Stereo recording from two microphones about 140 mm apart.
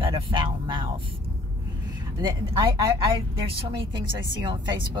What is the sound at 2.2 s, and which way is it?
Speech, 30° right (ahead or behind).